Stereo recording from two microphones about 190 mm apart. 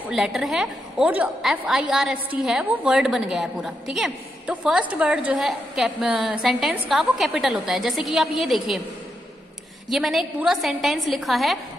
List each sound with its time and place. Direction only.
0.1 s a woman's voice: centre (ahead or behind)
9.8 s a woman's voice: centre (ahead or behind)